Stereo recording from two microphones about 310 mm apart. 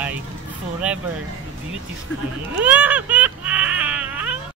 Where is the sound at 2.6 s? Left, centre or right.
Centre.